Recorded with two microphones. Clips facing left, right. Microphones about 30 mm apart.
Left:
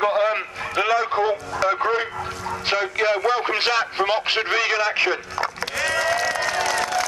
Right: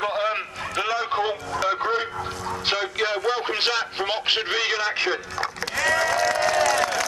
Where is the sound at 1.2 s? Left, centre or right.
Centre.